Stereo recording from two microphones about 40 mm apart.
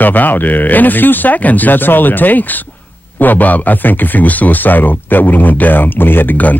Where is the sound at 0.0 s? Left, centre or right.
Left.